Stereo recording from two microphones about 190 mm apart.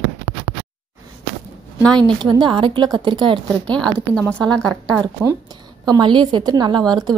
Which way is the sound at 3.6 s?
5° left (ahead or behind).